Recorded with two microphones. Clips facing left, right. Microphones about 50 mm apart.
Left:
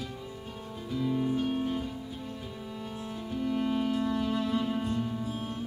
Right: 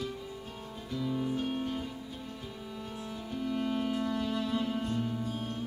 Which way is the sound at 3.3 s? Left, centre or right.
Centre.